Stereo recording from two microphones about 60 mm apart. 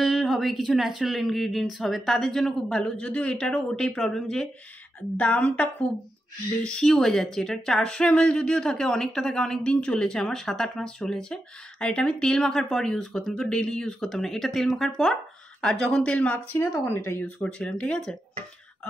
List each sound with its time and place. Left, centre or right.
0.0 s speech: centre
5.1 s speech: left
16.5 s speech: left
17.4 s speech: centre